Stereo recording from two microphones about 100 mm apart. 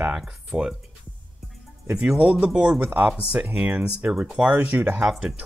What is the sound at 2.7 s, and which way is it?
Speech, 20° right (ahead or behind).